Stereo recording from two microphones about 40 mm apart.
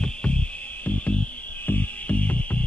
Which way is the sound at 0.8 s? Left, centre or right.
Left.